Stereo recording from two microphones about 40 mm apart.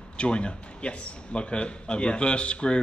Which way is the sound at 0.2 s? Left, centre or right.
Left.